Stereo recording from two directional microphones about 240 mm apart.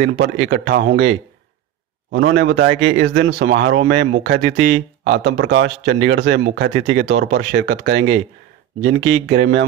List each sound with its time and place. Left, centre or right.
0.2 s a man's voice: right